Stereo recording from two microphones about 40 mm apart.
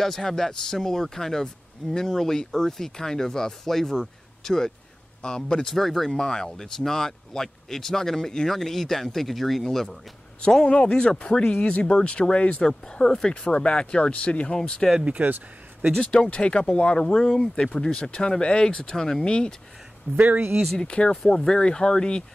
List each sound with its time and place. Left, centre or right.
0.0 s speech: centre
5.8 s speech: centre
10.7 s speech: left
12.6 s speech: centre
14.6 s speech: centre
15.0 s speech: right
16.1 s speech: left
20.2 s speech: right
20.7 s speech: left